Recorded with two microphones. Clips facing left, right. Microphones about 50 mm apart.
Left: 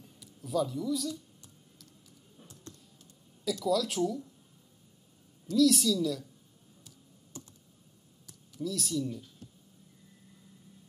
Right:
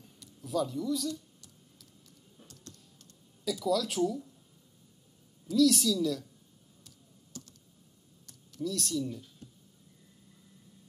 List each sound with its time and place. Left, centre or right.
0.0 s a sound: centre
3.5 s speech: centre
5.5 s speech: centre
7.3 s computer keyboard: left
8.3 s speech: centre